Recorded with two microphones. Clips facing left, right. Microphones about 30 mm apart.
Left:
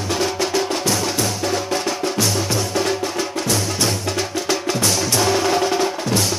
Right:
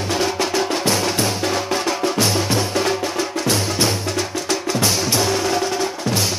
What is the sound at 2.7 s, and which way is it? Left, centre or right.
Music, centre.